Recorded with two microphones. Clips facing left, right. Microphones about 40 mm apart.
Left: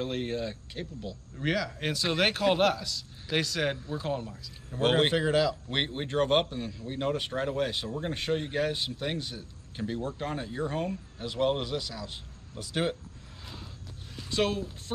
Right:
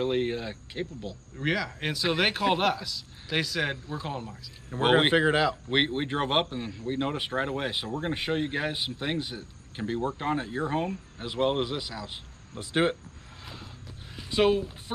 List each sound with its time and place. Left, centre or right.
0.0 s speech: centre
4.7 s speech: centre
14.1 s a sound: centre